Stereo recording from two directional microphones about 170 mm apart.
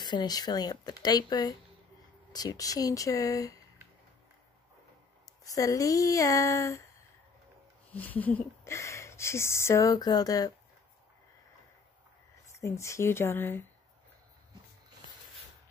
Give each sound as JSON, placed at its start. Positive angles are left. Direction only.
{"t": 0.0, "sound": "speech", "side_deg": 25}
{"t": 5.4, "sound": "speech", "side_deg": 20}
{"t": 7.9, "sound": "speech", "side_deg": 10}
{"t": 12.5, "sound": "speech", "side_deg": 15}